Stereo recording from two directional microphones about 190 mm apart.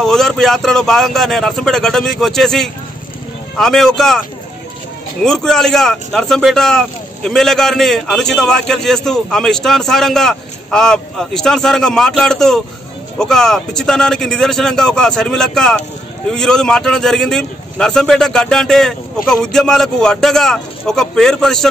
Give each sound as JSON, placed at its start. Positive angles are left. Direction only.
{"t": 0.0, "sound": "a man's voice", "side_deg": 0}
{"t": 5.2, "sound": "a man's voice", "side_deg": 5}